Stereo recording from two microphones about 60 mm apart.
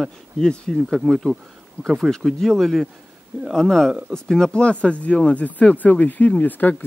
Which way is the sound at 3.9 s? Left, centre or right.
Centre.